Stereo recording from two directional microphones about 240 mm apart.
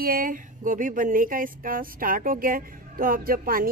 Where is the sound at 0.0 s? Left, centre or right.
Right.